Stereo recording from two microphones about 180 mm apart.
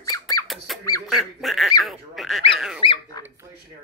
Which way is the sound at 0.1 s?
15° left (ahead or behind).